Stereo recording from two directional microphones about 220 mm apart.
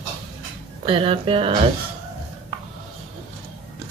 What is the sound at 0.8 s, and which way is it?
Speech, 25° right (ahead or behind).